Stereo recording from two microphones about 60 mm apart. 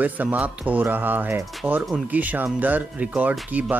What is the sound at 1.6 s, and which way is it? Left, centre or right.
Speech, centre.